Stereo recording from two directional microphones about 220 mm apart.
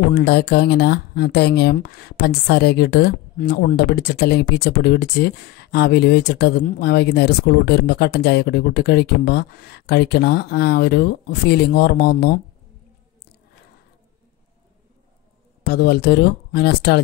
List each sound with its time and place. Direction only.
0.1 s speech: 50° left (ahead or behind)
15.6 s speech: 45° left (ahead or behind)